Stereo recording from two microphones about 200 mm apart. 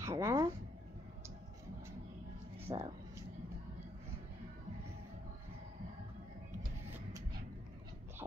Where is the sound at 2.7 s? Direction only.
20° right (ahead or behind).